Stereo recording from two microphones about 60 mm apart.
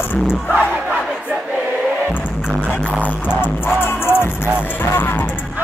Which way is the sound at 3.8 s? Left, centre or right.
Left.